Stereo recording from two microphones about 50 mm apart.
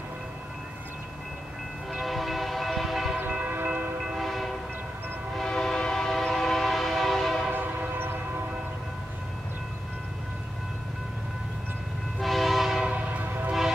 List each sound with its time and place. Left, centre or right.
2.0 s train: centre
3.2 s train: right
4.1 s train: centre
7.5 s train: right
12.2 s train horn: centre
12.9 s train: right